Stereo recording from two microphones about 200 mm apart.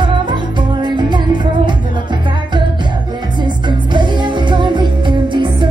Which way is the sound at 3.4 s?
20° right (ahead or behind).